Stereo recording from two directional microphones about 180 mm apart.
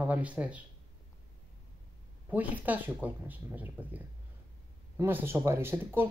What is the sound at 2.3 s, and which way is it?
Speech, 10° right (ahead or behind).